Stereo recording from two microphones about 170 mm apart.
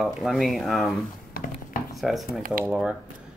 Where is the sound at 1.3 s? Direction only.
55° left (ahead or behind).